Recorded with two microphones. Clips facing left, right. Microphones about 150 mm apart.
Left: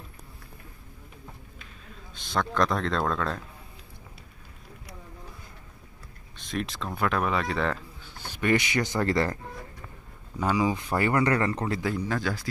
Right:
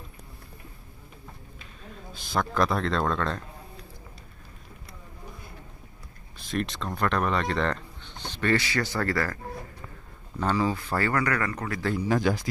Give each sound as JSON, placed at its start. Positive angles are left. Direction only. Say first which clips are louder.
{"t": 2.1, "sound": "speech", "louder": "even", "side_deg": -10}
{"t": 6.3, "sound": "speech", "louder": "right 2 dB", "side_deg": 0}
{"t": 10.4, "sound": "speech", "louder": "even", "side_deg": 15}
{"t": 12.1, "sound": "speech", "louder": "right 5 dB", "side_deg": -15}